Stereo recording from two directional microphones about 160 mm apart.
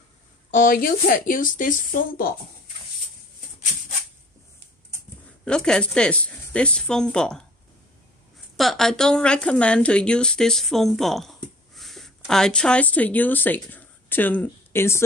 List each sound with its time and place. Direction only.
0.5 s speech: 60° left (ahead or behind)
5.4 s speech: 5° left (ahead or behind)
8.5 s speech: centre (ahead or behind)